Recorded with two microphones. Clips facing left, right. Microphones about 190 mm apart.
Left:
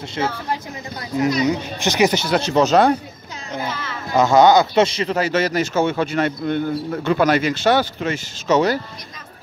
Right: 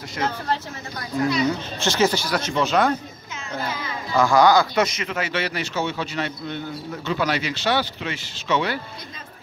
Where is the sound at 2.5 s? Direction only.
40° left (ahead or behind).